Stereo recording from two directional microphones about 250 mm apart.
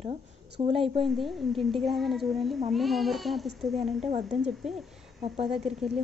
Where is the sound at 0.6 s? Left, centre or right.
Right.